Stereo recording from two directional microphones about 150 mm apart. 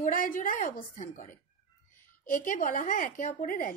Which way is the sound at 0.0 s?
65° left (ahead or behind).